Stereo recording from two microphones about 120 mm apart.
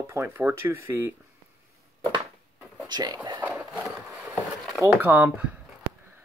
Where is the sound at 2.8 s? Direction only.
35° right (ahead or behind).